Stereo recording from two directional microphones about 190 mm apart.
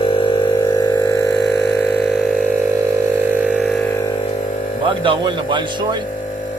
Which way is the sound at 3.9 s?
15° left (ahead or behind).